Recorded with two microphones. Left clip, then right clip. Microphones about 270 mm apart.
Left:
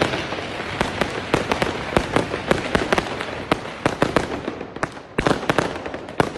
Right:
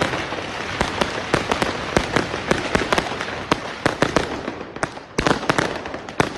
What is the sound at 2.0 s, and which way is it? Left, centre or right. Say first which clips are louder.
Fireworks: even; centre.